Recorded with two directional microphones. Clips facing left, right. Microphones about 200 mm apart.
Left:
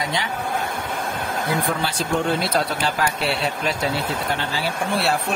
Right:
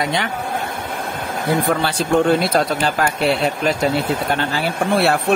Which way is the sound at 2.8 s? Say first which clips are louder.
Right 4 dB; 50° right (ahead or behind).